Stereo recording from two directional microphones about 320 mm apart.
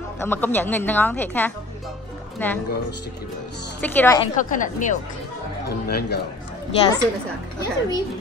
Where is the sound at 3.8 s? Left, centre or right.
Centre.